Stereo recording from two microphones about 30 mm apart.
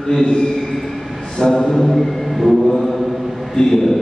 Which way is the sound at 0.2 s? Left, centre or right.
Centre.